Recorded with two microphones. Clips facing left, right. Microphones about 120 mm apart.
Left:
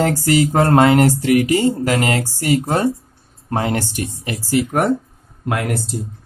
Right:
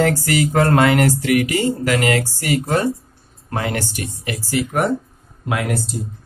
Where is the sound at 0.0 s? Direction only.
25° left (ahead or behind).